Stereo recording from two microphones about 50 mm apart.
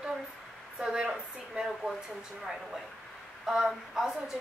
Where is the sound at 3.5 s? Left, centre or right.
Centre.